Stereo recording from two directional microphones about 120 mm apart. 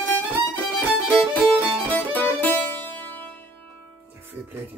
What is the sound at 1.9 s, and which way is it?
Music, 15° left (ahead or behind).